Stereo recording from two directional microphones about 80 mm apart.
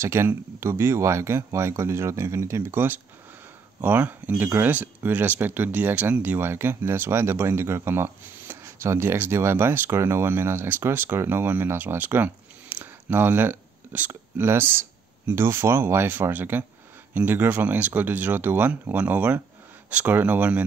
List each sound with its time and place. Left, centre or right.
0.0 s speech: right